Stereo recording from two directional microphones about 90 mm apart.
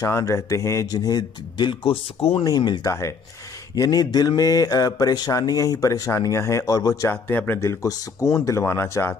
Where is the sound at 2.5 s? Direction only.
50° left (ahead or behind).